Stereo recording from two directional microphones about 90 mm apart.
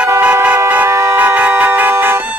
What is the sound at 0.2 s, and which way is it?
Music, 15° right (ahead or behind).